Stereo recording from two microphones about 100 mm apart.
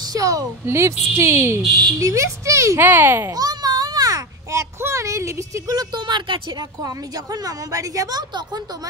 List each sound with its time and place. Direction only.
0.1 s speech: 35° right (ahead or behind)
1.6 s speech: centre (ahead or behind)
2.0 s speech: 30° right (ahead or behind)
3.3 s a sound: 40° right (ahead or behind)
6.8 s a woman's voice: 35° right (ahead or behind)